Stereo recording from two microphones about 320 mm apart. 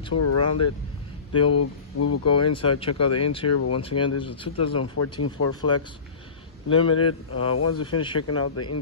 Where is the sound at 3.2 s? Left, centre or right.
Centre.